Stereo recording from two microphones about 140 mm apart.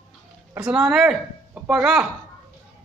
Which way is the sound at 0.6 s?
5° right (ahead or behind).